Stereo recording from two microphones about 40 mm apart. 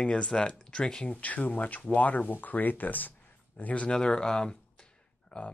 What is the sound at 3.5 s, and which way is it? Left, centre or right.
Speech, left.